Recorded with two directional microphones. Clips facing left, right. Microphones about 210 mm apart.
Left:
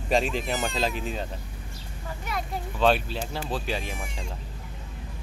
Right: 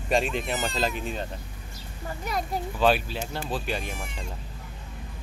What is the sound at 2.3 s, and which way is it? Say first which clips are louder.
Speech: right 3 dB; 40° right (ahead or behind).